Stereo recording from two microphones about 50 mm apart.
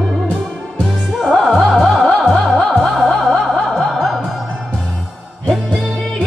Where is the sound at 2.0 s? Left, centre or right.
Left.